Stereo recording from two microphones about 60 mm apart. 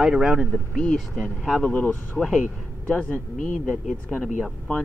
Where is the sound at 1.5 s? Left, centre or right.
Centre.